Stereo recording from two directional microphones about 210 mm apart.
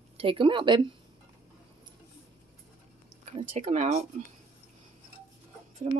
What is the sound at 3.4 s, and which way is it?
Speech, 30° right (ahead or behind).